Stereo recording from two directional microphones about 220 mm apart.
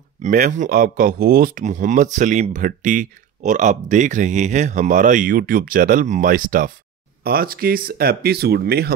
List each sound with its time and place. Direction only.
0.2 s speech: 35° right (ahead or behind)